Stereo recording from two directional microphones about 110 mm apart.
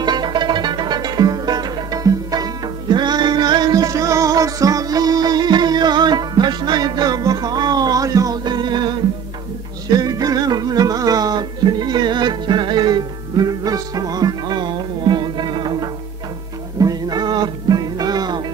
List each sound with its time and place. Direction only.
0.0 s music: 40° right (ahead or behind)